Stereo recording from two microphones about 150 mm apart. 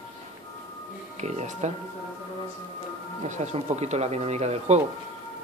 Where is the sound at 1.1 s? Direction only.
50° right (ahead or behind).